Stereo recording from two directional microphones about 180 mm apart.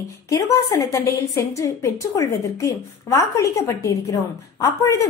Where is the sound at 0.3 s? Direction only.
20° left (ahead or behind).